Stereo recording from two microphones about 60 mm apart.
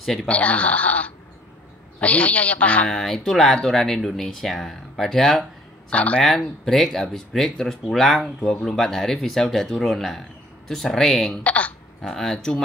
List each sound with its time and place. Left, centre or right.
0.0 s speech: centre
0.3 s a man's voice: left
2.9 s speech: centre
5.9 s a man's voice: left
6.2 s speech: centre
11.4 s a man's voice: left
12.0 s speech: centre